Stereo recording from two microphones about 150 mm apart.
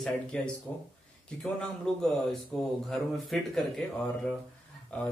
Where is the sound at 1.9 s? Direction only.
5° left (ahead or behind).